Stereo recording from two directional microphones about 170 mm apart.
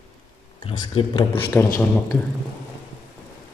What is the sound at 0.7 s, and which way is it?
Speech, 30° left (ahead or behind).